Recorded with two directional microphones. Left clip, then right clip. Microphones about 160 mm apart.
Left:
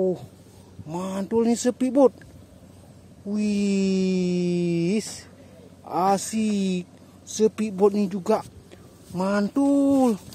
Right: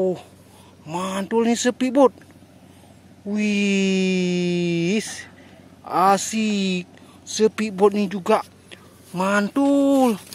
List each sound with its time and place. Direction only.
0.8 s speech: centre (ahead or behind)
3.3 s speech: 5° right (ahead or behind)